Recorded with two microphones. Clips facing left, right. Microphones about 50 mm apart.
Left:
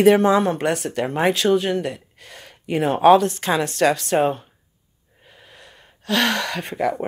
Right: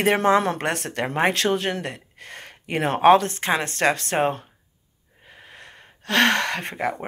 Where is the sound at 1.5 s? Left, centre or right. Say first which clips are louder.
Left 5 dB; right.